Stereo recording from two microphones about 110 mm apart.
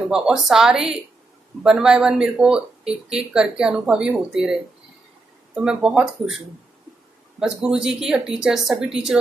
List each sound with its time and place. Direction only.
0.1 s a woman's voice: 5° right (ahead or behind)
5.6 s speech: 5° right (ahead or behind)
7.3 s a woman's voice: 5° right (ahead or behind)